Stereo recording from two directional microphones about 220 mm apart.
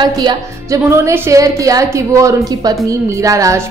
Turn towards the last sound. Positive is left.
turn(degrees=-15)  # may be behind; listen again after turning